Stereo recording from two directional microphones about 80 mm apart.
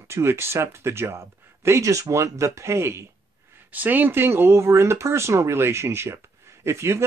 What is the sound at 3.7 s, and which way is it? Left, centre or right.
Speech, right.